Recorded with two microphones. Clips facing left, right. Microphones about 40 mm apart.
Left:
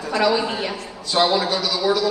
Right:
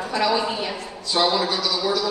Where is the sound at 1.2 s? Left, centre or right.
Left.